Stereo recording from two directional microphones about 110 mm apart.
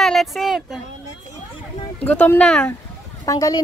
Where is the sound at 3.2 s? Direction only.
35° left (ahead or behind).